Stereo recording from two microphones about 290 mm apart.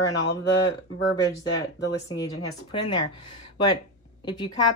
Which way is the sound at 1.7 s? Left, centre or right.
Left.